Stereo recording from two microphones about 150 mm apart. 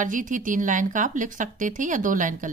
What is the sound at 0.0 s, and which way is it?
Speech, 60° right (ahead or behind).